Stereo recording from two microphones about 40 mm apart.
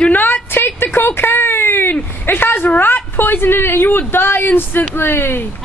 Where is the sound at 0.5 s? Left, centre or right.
Left.